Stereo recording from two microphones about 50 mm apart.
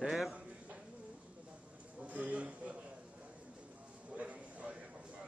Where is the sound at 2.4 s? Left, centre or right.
Right.